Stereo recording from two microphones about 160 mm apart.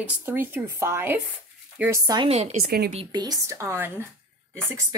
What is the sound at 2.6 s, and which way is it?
Speech, 75° right (ahead or behind).